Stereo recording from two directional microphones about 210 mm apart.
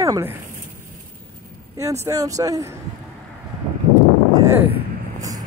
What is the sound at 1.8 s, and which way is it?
Speech, 15° right (ahead or behind).